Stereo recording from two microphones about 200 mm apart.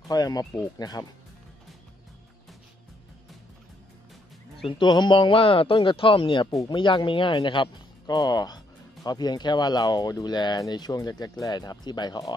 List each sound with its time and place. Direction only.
0.1 s speech: 20° left (ahead or behind)
4.6 s speech: 25° left (ahead or behind)